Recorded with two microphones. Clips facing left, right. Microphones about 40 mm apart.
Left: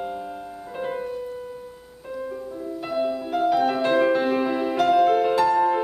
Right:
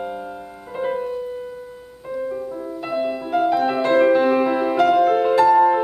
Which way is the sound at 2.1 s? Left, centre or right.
Centre.